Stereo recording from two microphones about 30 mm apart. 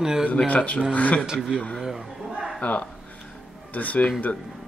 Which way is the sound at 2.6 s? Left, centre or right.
Left.